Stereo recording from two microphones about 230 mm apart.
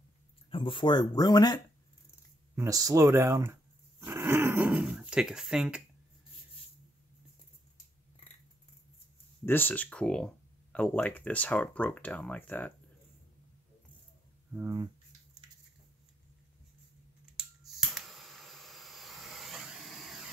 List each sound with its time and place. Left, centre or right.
0.5 s speech: left
2.5 s speech: centre
4.0 s a sound: centre
9.5 s speech: centre
14.5 s speech: centre
17.6 s a sound: centre